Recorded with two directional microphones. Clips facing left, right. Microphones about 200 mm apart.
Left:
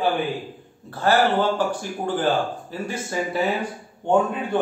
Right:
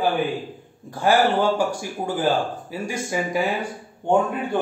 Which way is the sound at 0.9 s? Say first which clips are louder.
Right 1 dB; 10° right (ahead or behind).